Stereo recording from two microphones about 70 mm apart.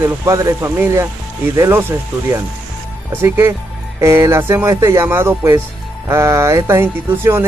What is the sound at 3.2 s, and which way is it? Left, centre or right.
Speech, right.